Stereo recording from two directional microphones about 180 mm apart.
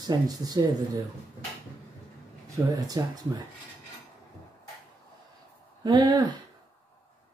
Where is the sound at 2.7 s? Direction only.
20° right (ahead or behind).